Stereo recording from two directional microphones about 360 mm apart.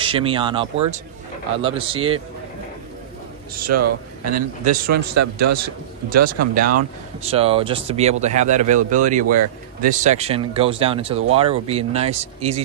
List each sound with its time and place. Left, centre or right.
0.0 s speech: centre
3.7 s a man's voice: right
4.3 s speech: right
4.9 s a man's voice: right
7.2 s speech: centre